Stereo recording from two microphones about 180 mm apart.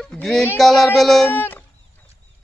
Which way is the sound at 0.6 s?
Centre (ahead or behind).